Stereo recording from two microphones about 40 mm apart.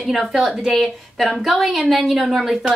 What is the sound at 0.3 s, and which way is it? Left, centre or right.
Speech, centre.